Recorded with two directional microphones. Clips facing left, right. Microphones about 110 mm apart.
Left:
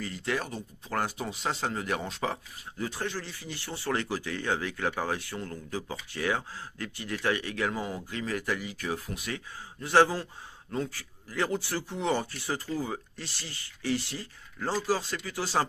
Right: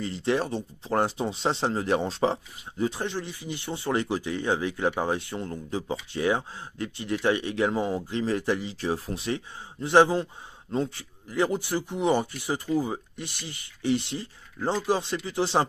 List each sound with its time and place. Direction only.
0.0 s speech: 25° right (ahead or behind)